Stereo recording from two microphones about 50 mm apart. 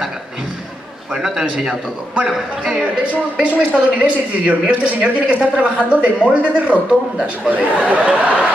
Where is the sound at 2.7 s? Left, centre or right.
Right.